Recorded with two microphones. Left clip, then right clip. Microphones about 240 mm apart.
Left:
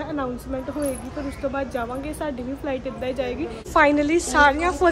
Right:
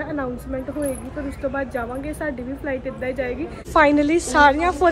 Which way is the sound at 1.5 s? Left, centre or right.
Centre.